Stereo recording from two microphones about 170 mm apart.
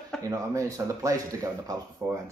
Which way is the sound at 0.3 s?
20° right (ahead or behind).